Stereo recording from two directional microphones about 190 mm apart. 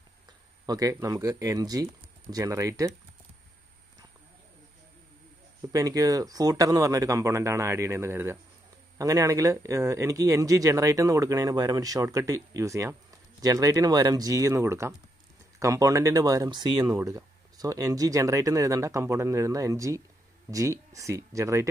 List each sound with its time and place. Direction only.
0.7 s speech: 20° right (ahead or behind)
5.7 s speech: 20° right (ahead or behind)